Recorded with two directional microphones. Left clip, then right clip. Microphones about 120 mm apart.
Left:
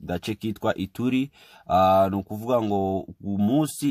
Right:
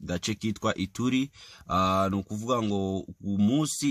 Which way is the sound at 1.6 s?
15° left (ahead or behind).